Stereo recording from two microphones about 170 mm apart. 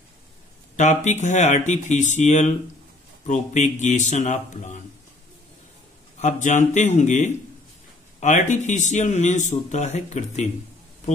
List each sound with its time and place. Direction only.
0.7 s speech: 45° left (ahead or behind)
6.1 s speech: 45° left (ahead or behind)